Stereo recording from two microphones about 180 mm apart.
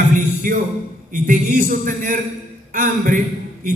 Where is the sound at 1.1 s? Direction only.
45° right (ahead or behind).